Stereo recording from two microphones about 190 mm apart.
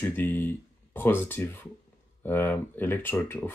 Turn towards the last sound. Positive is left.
turn(degrees=10)  # may be behind; listen again after turning